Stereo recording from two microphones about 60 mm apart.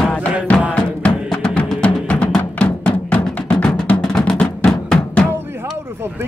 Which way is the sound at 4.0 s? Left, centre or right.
Centre.